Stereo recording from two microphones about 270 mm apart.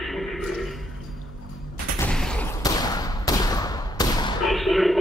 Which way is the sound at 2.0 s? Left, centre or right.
Centre.